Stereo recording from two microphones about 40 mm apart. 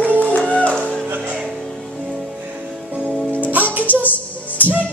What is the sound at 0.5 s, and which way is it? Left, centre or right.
Music, left.